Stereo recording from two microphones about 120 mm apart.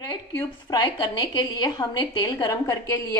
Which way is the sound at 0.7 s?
35° left (ahead or behind).